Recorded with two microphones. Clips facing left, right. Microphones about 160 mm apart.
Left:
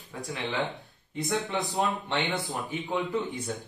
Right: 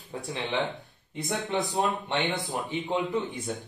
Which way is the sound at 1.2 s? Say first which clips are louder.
Even; 20° right (ahead or behind).